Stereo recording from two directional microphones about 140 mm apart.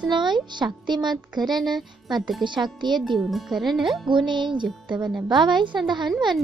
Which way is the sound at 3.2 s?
Centre (ahead or behind).